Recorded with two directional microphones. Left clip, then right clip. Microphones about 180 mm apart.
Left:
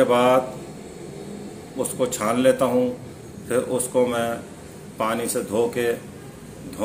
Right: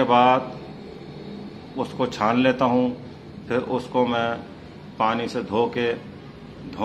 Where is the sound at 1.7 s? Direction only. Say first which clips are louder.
Left 1 dB; 35° right (ahead or behind).